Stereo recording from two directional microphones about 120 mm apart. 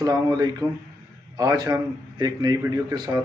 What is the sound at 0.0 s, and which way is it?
A man's voice, 35° right (ahead or behind).